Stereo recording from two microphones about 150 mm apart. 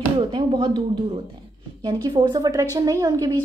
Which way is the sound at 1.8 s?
30° right (ahead or behind).